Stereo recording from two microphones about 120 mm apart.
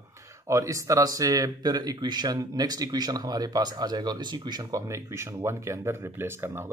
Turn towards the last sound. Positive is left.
turn(degrees=-20)  # may be behind; listen again after turning